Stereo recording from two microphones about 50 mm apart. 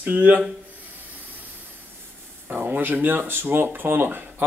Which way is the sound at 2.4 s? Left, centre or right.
Right.